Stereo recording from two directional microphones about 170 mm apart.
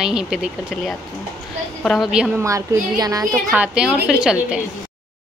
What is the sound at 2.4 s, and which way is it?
Speech, 20° right (ahead or behind).